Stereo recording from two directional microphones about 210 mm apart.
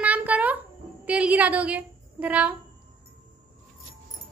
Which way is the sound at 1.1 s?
5° right (ahead or behind).